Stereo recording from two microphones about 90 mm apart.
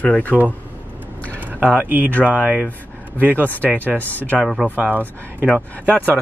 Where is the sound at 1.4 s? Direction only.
20° right (ahead or behind).